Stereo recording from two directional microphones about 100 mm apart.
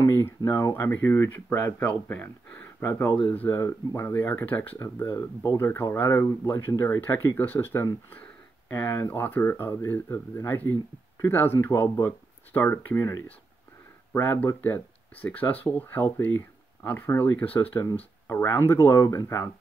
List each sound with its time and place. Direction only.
0.0 s a sound: 25° left (ahead or behind)
0.5 s speech: 25° left (ahead or behind)
14.1 s speech: 20° left (ahead or behind)